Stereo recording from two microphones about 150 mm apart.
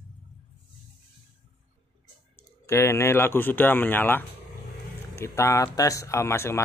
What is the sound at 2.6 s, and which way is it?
Speech, 20° left (ahead or behind).